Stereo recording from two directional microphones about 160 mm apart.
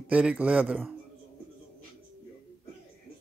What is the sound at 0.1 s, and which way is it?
Speech, 5° right (ahead or behind).